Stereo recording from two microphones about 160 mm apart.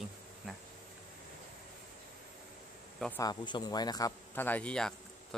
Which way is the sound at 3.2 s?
25° left (ahead or behind).